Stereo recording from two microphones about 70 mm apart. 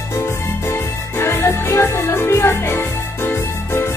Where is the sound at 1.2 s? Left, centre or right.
Left.